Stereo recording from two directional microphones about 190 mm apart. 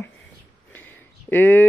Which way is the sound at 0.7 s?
10° left (ahead or behind).